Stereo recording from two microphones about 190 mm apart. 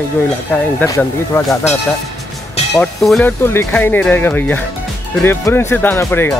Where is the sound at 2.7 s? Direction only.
5° left (ahead or behind).